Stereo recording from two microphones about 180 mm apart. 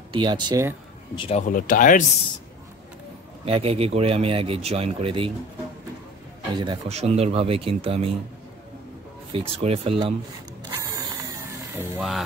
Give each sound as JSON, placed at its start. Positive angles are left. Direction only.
{"t": 0.1, "sound": "speech", "side_deg": -25}
{"t": 1.1, "sound": "speech", "side_deg": 30}
{"t": 1.5, "sound": "speech", "side_deg": 50}
{"t": 3.4, "sound": "speech", "side_deg": -35}
{"t": 6.5, "sound": "speech", "side_deg": -25}
{"t": 9.3, "sound": "speech", "side_deg": -30}
{"t": 10.8, "sound": "a sound", "side_deg": -20}